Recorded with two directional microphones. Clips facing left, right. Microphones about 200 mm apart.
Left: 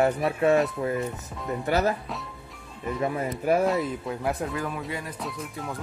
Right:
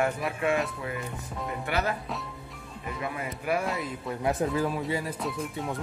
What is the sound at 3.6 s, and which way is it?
Speech, centre (ahead or behind).